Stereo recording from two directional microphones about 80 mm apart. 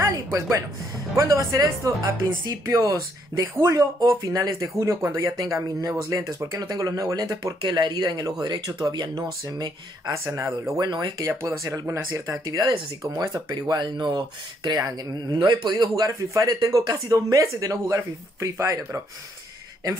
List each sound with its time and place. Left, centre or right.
0.0 s a man's voice: right
10.1 s speech: right
10.8 s speech: right
11.9 s a man's voice: right
13.5 s speech: right
14.8 s a man's voice: right
15.3 s a man's voice: right